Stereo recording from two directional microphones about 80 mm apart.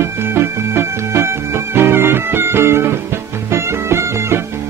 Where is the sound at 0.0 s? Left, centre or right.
Right.